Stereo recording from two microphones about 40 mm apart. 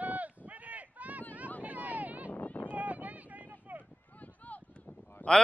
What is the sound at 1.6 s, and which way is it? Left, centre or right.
Vehicle, right.